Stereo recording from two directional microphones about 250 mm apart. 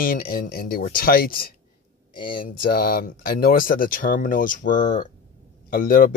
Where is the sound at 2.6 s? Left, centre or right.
Left.